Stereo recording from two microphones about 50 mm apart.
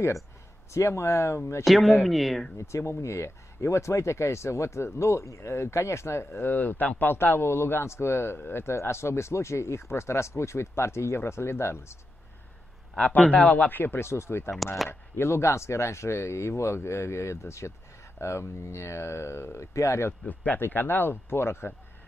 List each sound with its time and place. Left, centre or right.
0.7 s speech: left
1.6 s speech: centre
2.5 s speech: left
8.4 s speech: left
8.8 s speech: left
13.2 s a man's voice: left
13.7 s speech: left
20.1 s speech: left